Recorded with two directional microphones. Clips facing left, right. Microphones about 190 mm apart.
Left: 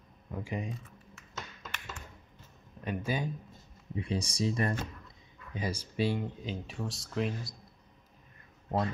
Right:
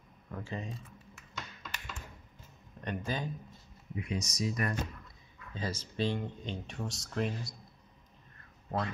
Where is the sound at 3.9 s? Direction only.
30° left (ahead or behind).